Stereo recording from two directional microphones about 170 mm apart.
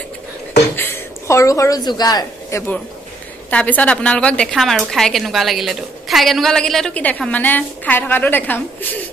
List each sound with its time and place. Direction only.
0.7 s a woman's voice: 15° left (ahead or behind)
3.4 s a woman's voice: 10° left (ahead or behind)